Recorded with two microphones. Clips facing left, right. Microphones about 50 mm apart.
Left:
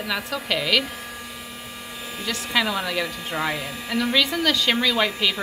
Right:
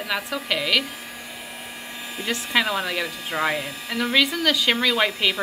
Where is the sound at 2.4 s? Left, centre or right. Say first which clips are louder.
Even; centre.